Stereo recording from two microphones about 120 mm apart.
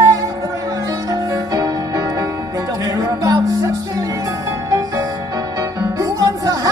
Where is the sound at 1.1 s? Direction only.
30° right (ahead or behind).